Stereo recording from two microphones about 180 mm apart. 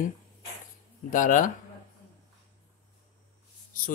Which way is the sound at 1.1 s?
45° left (ahead or behind).